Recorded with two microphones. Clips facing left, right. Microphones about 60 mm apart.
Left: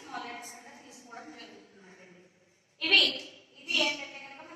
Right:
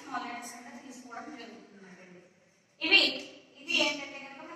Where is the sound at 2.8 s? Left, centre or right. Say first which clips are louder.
Even; right.